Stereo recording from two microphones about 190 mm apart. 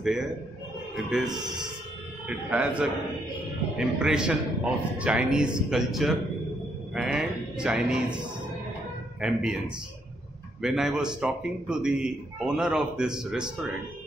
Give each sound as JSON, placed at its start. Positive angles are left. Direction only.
{"t": 0.0, "sound": "a man's voice", "side_deg": 0}
{"t": 1.3, "sound": "a man's voice", "side_deg": -20}
{"t": 2.2, "sound": "a man's voice", "side_deg": -5}
{"t": 9.2, "sound": "a man's voice", "side_deg": -5}
{"t": 10.6, "sound": "a man's voice", "side_deg": -5}